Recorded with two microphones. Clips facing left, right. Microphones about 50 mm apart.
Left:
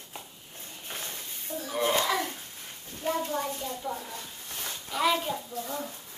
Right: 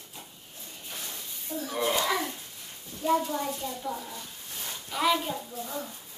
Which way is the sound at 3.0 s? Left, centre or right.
Left.